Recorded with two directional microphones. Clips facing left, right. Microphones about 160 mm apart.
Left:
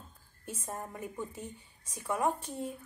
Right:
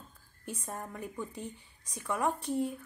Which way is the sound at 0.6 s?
25° left (ahead or behind).